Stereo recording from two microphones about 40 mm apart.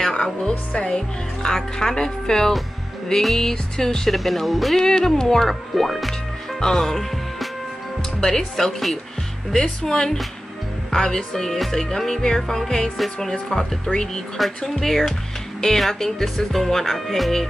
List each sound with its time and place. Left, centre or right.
0.1 s speech: centre
4.8 s speech: centre
6.6 s speech: centre